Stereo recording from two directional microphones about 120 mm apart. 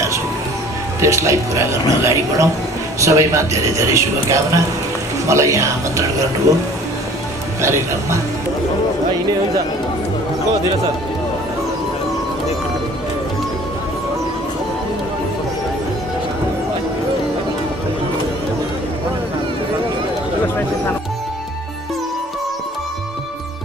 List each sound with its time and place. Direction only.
1.0 s a man's voice: 25° right (ahead or behind)
7.6 s a man's voice: 25° right (ahead or behind)